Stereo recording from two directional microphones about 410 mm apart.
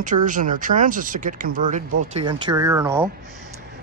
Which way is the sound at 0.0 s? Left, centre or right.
Centre.